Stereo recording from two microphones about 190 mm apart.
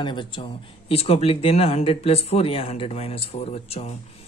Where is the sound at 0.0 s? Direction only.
25° left (ahead or behind).